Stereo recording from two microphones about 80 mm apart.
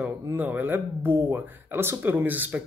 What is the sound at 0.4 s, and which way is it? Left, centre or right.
Speech, right.